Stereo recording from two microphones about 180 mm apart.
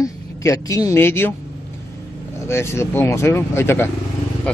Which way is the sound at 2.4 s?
15° left (ahead or behind).